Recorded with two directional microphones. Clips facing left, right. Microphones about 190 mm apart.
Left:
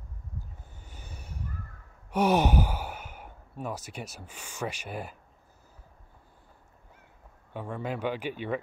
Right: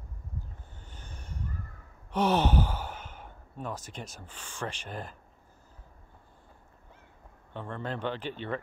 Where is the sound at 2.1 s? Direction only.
10° left (ahead or behind).